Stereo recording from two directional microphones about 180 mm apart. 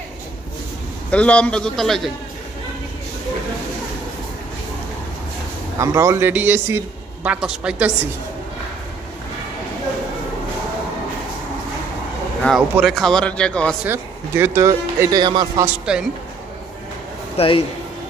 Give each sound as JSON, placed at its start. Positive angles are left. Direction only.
{"t": 1.1, "sound": "speech", "side_deg": 5}
{"t": 5.8, "sound": "speech", "side_deg": -15}
{"t": 12.4, "sound": "speech", "side_deg": -5}
{"t": 13.8, "sound": "speech", "side_deg": -10}
{"t": 15.6, "sound": "speech", "side_deg": -5}
{"t": 17.4, "sound": "a man's voice", "side_deg": 30}